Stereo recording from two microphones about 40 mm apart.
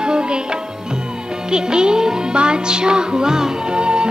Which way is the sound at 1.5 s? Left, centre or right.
Centre.